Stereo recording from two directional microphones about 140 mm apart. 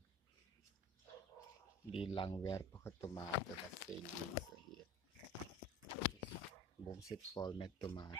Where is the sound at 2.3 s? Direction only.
25° left (ahead or behind).